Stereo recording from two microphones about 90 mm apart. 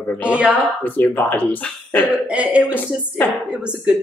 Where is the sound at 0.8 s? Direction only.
20° left (ahead or behind).